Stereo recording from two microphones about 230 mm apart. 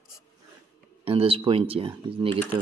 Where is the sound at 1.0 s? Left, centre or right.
Right.